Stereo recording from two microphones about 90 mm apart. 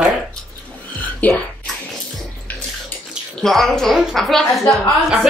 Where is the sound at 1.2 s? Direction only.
20° left (ahead or behind).